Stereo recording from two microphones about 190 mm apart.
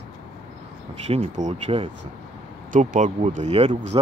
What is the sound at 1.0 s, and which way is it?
Speech, 35° right (ahead or behind).